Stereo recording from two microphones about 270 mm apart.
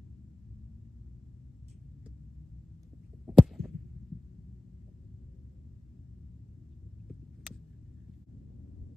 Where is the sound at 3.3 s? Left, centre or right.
Centre.